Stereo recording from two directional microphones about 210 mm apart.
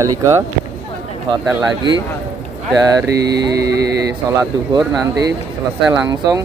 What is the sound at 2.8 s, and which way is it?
Speech, 15° right (ahead or behind).